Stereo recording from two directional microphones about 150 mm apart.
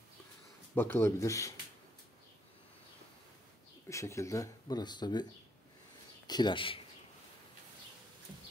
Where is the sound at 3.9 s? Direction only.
20° left (ahead or behind).